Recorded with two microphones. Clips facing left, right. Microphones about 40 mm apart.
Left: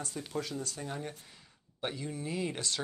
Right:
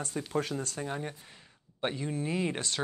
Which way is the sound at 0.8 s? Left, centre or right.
Right.